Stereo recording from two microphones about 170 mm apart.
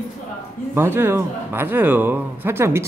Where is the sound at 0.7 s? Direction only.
15° right (ahead or behind).